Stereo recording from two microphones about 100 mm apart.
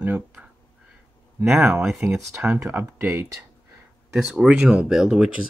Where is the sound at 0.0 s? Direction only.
15° right (ahead or behind).